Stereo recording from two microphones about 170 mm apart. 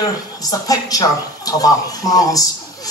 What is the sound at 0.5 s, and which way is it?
Speech, 20° left (ahead or behind).